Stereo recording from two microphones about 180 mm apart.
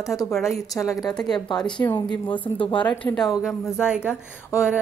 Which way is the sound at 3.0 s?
Centre (ahead or behind).